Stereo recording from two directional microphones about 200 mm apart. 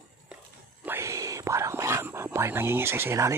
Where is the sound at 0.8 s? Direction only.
15° right (ahead or behind).